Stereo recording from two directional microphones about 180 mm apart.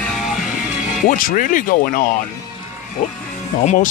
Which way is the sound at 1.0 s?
50° left (ahead or behind).